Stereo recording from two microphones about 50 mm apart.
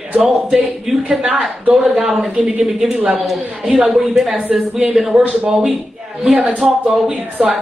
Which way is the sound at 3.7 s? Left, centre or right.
Right.